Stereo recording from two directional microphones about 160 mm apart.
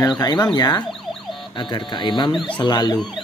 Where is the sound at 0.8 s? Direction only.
Centre (ahead or behind).